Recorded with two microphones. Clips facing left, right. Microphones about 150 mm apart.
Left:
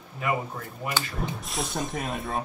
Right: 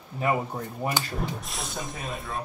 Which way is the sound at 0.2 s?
35° right (ahead or behind).